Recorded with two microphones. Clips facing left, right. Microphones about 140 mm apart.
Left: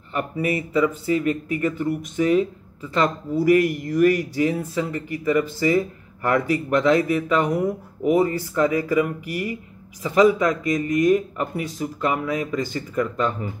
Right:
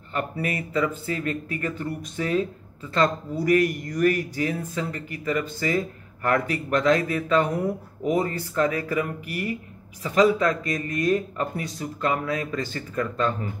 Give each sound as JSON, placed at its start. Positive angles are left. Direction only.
{"t": 0.1, "sound": "speech", "side_deg": 20}
{"t": 3.6, "sound": "speech", "side_deg": 15}